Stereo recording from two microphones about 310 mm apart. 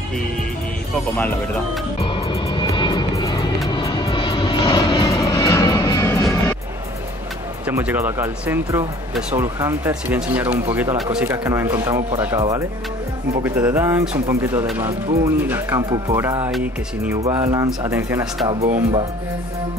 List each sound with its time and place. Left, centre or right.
2.0 s music: centre
7.6 s speech: centre
18.5 s speech: centre